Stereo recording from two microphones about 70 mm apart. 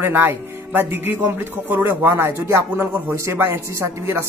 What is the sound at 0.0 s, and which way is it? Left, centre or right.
Speech, right.